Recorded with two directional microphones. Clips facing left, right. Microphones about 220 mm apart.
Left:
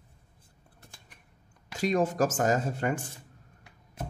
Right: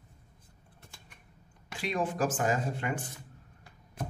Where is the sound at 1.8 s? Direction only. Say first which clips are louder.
Left 5 dB; 40° left (ahead or behind).